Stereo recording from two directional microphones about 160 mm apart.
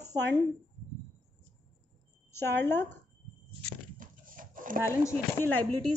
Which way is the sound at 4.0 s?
55° right (ahead or behind).